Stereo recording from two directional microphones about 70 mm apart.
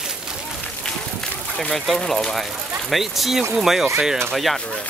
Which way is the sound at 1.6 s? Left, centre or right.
Centre.